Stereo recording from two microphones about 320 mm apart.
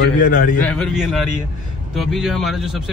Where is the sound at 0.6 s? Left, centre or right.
Centre.